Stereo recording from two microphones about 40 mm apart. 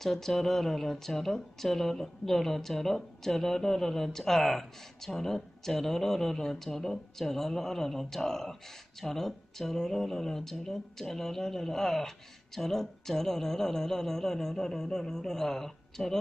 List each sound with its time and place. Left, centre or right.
0.0 s a woman's voice: centre